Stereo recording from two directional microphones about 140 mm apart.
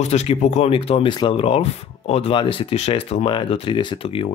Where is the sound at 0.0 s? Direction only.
50° left (ahead or behind).